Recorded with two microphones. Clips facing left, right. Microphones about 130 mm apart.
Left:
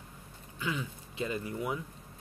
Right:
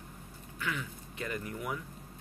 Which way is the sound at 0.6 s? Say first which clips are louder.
Left 2 dB; 20° left (ahead or behind).